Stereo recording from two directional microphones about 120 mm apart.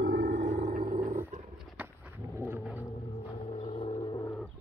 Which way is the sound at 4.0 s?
40° left (ahead or behind).